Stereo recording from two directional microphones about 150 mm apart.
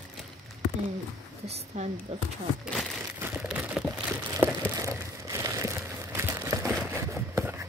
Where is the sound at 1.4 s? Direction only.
45° right (ahead or behind).